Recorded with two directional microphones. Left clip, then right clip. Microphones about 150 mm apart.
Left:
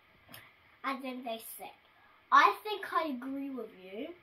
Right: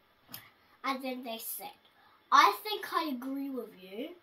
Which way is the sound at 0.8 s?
5° left (ahead or behind).